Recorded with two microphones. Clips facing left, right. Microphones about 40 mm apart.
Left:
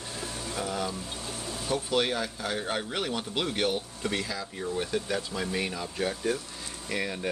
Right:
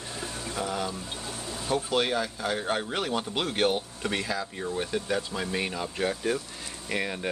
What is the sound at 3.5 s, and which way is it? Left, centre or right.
Speech, right.